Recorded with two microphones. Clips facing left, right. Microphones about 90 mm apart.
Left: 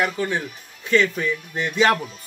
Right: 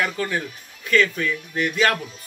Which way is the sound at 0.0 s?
20° left (ahead or behind).